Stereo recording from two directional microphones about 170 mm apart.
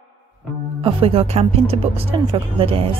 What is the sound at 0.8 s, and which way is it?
Speech, 35° right (ahead or behind).